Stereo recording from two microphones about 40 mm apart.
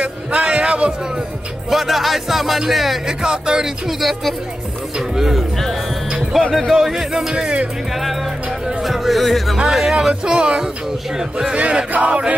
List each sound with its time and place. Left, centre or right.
0.0 s music: right
1.7 s speech: centre
3.1 s speech: centre
4.0 s speech: centre
5.1 s speech: centre
7.3 s a sound: right
7.9 s speech: centre
10.2 s a sound: right
11.1 s speech: centre
11.5 s a sound: right